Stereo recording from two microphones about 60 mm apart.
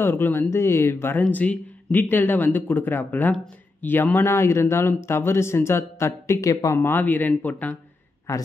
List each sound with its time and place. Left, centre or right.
0.0 s speech: left
0.5 s speech: left
1.2 s speech: left
1.9 s speech: left
6.8 s speech: left
8.3 s speech: left